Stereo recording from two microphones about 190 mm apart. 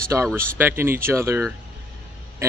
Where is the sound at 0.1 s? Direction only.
15° right (ahead or behind).